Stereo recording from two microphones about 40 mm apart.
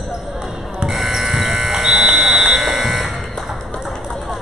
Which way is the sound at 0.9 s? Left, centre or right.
Centre.